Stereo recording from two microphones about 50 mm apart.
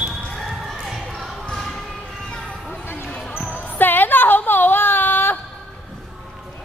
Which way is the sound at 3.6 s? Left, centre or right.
Left.